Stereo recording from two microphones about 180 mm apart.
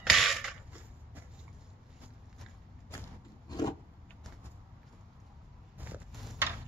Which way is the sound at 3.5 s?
20° left (ahead or behind).